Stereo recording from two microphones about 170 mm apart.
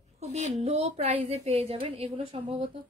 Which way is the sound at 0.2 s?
40° right (ahead or behind).